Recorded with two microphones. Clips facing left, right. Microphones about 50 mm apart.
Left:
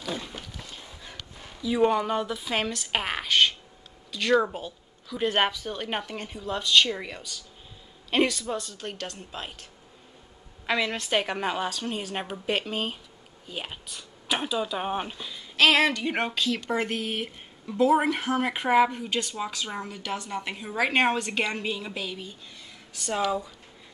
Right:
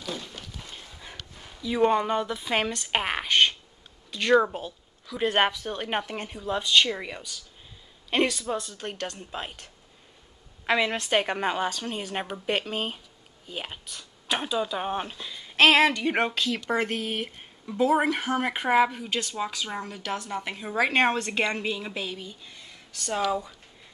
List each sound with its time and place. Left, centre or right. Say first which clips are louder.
0.0 s a sound: left 2 dB; centre
0.6 s a sound: even; centre
1.6 s a woman's voice: even; centre
10.7 s a woman's voice: right 2 dB; centre
15.7 s speech: right 2 dB; centre
22.9 s speech: even; centre